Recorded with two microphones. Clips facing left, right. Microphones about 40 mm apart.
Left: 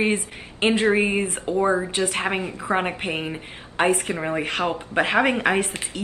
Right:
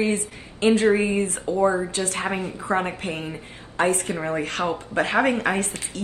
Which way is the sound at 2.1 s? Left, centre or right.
Left.